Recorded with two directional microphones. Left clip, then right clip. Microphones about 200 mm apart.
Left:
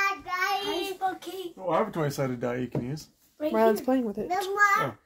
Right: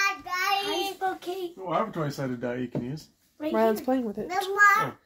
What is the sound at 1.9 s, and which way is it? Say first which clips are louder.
Speech: left 2 dB; 30° left (ahead or behind).